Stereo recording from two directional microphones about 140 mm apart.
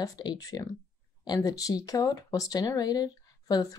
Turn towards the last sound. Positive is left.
turn(degrees=25)  # may be behind; listen again after turning